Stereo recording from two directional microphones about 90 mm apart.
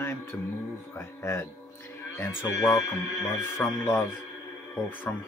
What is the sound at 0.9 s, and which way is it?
Speech, 30° left (ahead or behind).